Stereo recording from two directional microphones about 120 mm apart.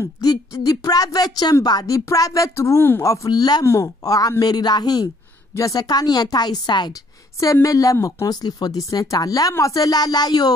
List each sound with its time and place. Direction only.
0.0 s a woman's voice: 35° left (ahead or behind)